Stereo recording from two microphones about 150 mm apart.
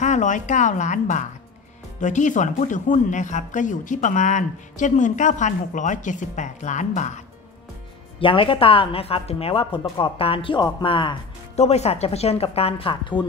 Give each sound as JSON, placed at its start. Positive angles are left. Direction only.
{"t": 0.0, "sound": "speech", "side_deg": 55}
{"t": 8.2, "sound": "speech", "side_deg": 35}
{"t": 11.5, "sound": "speech", "side_deg": 45}